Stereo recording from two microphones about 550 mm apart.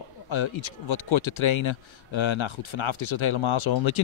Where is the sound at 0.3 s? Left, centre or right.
Left.